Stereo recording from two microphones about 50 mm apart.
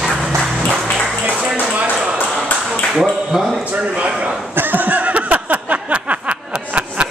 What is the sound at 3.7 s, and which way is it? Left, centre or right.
Speech, right.